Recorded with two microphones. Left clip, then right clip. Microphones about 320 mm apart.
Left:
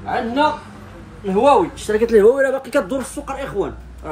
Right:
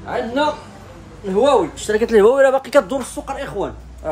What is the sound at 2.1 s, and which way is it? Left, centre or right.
Speech, centre.